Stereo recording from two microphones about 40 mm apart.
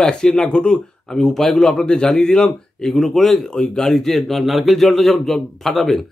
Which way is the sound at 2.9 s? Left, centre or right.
Centre.